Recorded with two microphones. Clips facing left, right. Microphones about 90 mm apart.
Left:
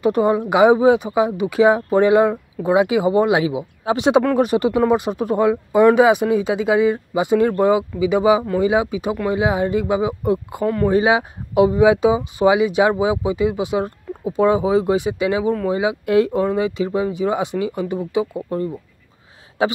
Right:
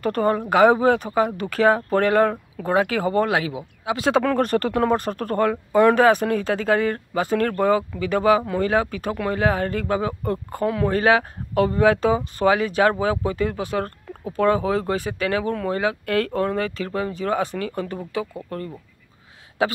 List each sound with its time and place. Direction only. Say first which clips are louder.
0.0 s speech: left 4 dB; 10° left (ahead or behind)
4.2 s speech: left 4 dB; 10° left (ahead or behind); by 19.7 s 25° left (ahead or behind)